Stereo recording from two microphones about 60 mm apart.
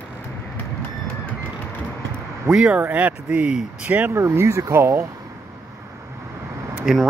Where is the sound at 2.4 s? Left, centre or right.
Centre.